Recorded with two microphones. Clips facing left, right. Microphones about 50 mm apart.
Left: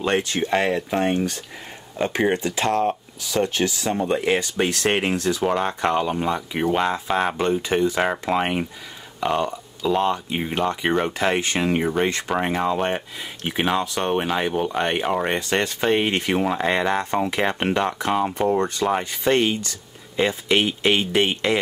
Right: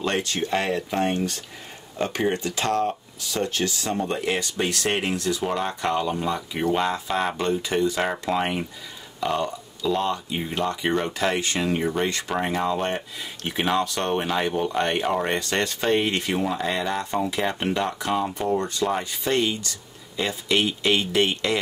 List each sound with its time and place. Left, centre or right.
0.0 s speech: centre